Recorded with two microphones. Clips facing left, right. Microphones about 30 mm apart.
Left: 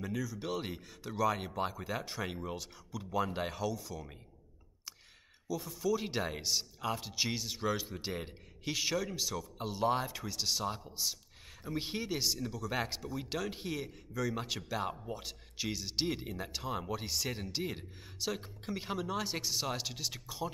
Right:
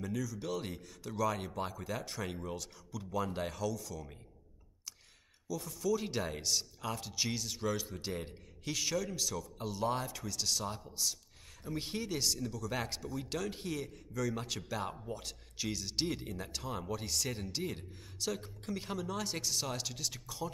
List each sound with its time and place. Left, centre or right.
0.0 s speech: centre
5.5 s speech: centre